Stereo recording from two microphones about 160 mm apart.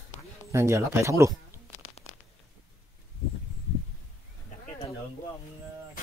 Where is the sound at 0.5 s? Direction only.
15° right (ahead or behind).